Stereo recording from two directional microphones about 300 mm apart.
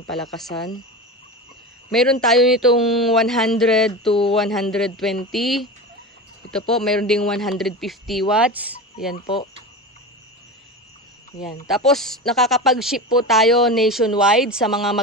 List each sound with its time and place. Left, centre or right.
0.1 s speech: centre
1.9 s speech: centre
4.1 s speech: centre
4.4 s speech: centre
6.7 s speech: centre
9.1 s speech: centre
11.7 s speech: centre